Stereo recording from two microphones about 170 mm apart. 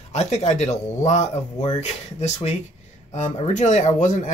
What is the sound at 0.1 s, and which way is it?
Speech, 40° left (ahead or behind).